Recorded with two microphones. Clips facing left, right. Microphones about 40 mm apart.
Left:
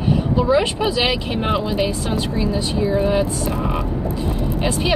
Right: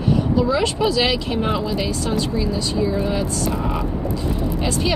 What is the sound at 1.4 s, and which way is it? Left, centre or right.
Speech, left.